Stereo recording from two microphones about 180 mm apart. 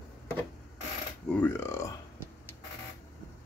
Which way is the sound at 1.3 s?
10° left (ahead or behind).